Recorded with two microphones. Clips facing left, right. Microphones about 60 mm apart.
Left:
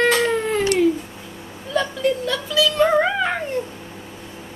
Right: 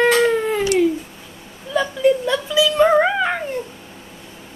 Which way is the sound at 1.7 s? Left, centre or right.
Centre.